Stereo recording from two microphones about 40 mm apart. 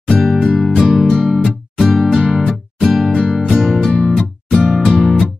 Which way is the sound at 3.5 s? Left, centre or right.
Centre.